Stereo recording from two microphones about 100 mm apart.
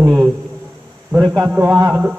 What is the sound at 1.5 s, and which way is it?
Speech, 25° right (ahead or behind).